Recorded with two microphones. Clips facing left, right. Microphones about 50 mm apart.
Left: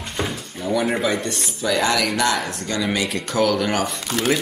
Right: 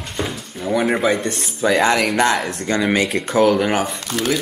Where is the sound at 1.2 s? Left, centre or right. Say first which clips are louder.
Right 4 dB; right.